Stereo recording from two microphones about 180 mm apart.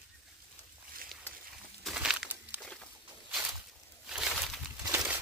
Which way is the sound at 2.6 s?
5° left (ahead or behind).